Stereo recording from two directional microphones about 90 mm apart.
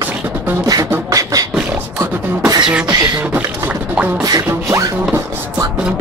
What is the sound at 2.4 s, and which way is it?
Beatboxing, 55° right (ahead or behind).